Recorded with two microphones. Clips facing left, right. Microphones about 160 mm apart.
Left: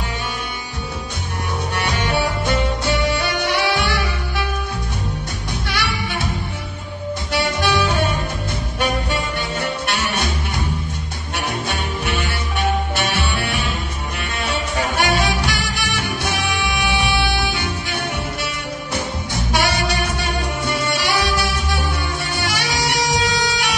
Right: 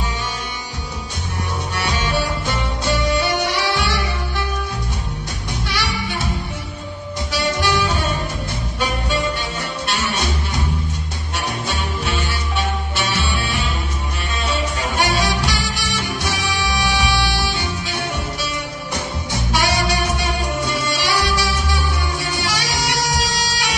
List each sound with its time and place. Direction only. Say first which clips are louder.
1.8 s music: left 1 dB; 55° left (ahead or behind)
5.7 s music: even; 55° left (ahead or behind)
7.6 s music: left 1 dB; 55° left (ahead or behind)
9.9 s music: even; 55° left (ahead or behind)
11.6 s music: even; 55° left (ahead or behind)
19.5 s music: even; 55° left (ahead or behind)